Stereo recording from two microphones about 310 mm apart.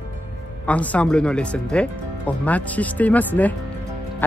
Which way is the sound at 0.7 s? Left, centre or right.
Centre.